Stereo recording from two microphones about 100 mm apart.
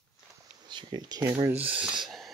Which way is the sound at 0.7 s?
45° right (ahead or behind).